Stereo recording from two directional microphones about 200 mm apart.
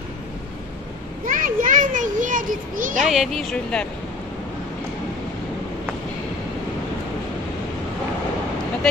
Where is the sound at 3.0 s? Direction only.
Centre (ahead or behind).